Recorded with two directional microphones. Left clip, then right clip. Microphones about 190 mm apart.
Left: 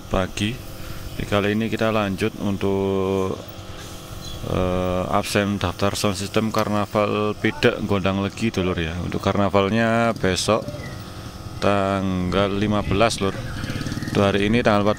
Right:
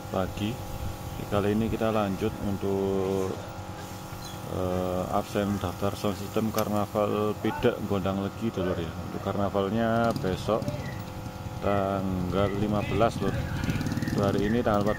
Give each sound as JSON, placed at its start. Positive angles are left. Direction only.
{"t": 0.1, "sound": "speech", "side_deg": 15}
{"t": 4.6, "sound": "speech", "side_deg": 20}
{"t": 11.6, "sound": "speech", "side_deg": 25}